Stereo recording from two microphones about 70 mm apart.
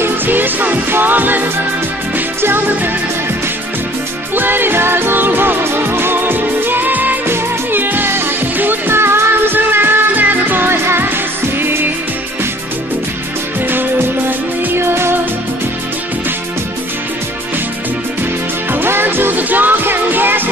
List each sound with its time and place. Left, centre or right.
0.0 s music: right
4.4 s music: right
13.7 s music: right
18.7 s music: right